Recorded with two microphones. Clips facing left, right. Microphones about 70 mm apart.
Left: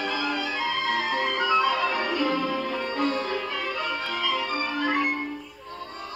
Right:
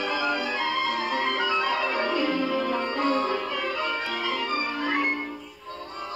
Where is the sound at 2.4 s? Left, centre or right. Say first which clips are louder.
Right 2 dB; centre.